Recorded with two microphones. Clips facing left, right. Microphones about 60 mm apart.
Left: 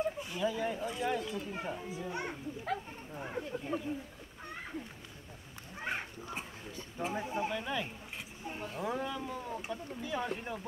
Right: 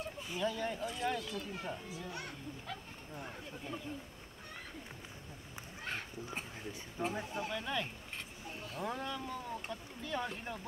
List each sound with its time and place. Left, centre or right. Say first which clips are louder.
0.3 s speech: left 3 dB; centre
1.2 s speech: left 3 dB; left
5.9 s a sound: left 5 dB; centre
7.0 s speech: left 2 dB; centre
7.2 s speech: left 5 dB; centre
7.5 s speech: left 2 dB; centre
8.5 s speech: left 8 dB; left
8.7 s speech: left 3 dB; centre